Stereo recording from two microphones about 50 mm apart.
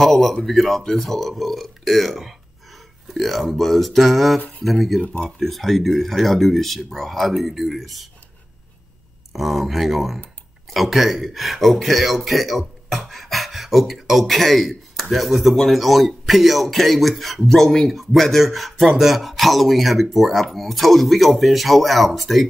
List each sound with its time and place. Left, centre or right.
0.0 s speech: centre
9.3 s speech: centre